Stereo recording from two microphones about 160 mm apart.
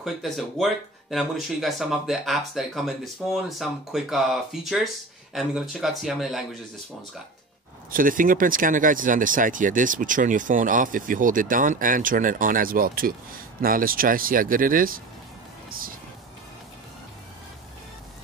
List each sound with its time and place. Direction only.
0.0 s speech: centre (ahead or behind)
7.9 s speech: 60° right (ahead or behind)
15.7 s music: 65° right (ahead or behind)